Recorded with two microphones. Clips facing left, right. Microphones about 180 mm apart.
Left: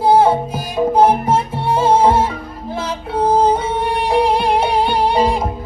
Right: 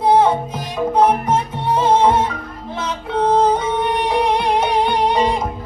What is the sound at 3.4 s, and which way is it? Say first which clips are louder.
Music: left 1 dB; 30° left (ahead or behind).